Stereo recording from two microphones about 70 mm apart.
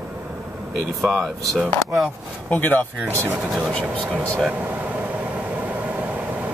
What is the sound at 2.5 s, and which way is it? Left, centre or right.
Speech, left.